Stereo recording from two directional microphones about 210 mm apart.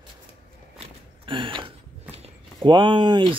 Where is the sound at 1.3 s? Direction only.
25° right (ahead or behind).